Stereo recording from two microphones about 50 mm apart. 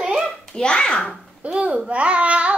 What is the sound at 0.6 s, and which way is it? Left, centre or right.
Speech, centre.